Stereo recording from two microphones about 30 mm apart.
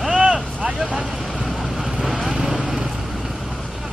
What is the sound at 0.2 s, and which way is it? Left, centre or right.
Vehicle, right.